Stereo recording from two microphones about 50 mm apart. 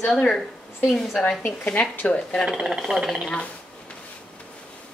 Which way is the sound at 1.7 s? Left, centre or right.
Left.